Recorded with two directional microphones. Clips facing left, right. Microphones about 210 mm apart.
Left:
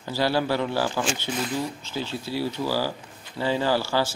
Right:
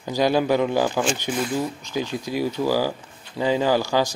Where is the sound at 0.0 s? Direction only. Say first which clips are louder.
Right 4 dB; 15° right (ahead or behind).